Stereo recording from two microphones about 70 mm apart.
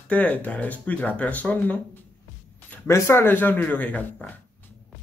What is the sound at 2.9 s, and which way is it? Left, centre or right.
Speech, left.